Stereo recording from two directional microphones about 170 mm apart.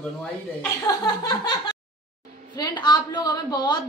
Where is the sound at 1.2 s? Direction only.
25° left (ahead or behind).